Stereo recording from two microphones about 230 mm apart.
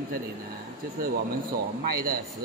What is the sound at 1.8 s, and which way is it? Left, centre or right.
Speech, right.